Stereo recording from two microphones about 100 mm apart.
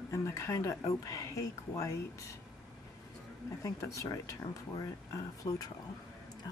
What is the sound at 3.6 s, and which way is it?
Speech, 30° left (ahead or behind).